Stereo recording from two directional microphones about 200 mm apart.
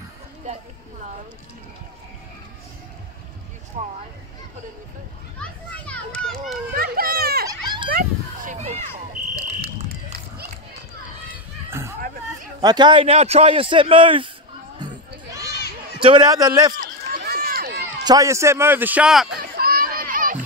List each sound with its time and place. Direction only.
3.8 s speech: 35° right (ahead or behind)
5.4 s a child's voice: 5° left (ahead or behind)
6.7 s children playing: 50° right (ahead or behind)
7.4 s children playing: 20° right (ahead or behind)
7.9 s a sound: 45° right (ahead or behind)
9.2 s fire alarm: 35° right (ahead or behind)
12.6 s a man's voice: 20° right (ahead or behind)
16.0 s a man's voice: 25° right (ahead or behind)
16.7 s run: 50° right (ahead or behind)
18.0 s a man's voice: 15° right (ahead or behind)
19.3 s children playing: 50° right (ahead or behind)